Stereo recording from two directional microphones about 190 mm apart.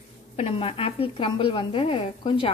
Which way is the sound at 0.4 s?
30° left (ahead or behind).